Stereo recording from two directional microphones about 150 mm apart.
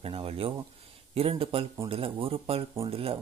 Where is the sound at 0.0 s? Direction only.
40° right (ahead or behind).